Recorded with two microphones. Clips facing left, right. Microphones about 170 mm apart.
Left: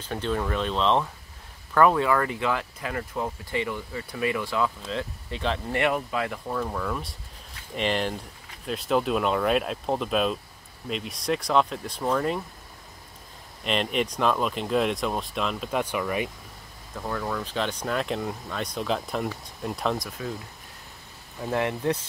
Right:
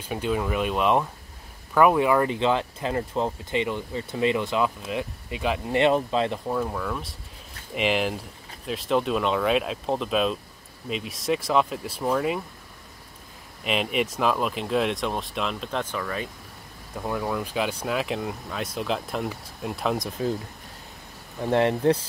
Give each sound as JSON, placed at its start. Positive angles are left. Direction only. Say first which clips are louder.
{"t": 0.0, "sound": "speech", "louder": "right 2 dB", "side_deg": -10}
{"t": 5.8, "sound": "speech", "louder": "right 6 dB", "side_deg": -25}
{"t": 13.7, "sound": "speech", "louder": "right 1 dB", "side_deg": -5}
{"t": 16.9, "sound": "speech", "louder": "right 2 dB", "side_deg": -15}
{"t": 20.0, "sound": "speech", "louder": "right 6 dB", "side_deg": -30}
{"t": 21.4, "sound": "speech", "louder": "right 5 dB", "side_deg": -30}